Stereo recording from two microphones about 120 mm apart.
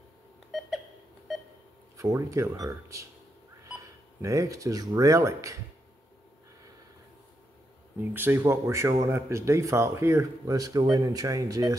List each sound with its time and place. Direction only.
0.5 s beep: centre (ahead or behind)
2.0 s speech: 25° right (ahead or behind)
8.0 s speech: 15° right (ahead or behind)